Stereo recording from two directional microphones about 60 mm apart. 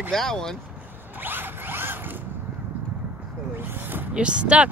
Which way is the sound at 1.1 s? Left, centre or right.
Right.